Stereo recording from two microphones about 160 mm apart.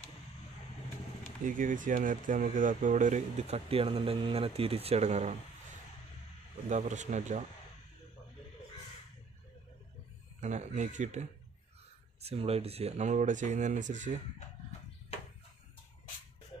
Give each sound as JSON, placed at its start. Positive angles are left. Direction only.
{"t": 1.4, "sound": "speech", "side_deg": -55}
{"t": 6.7, "sound": "speech", "side_deg": -45}
{"t": 10.4, "sound": "speech", "side_deg": -45}